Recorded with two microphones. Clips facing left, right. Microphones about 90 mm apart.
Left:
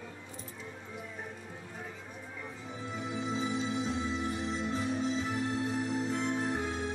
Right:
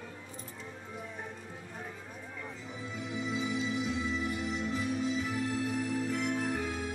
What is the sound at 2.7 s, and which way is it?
Music, 35° left (ahead or behind).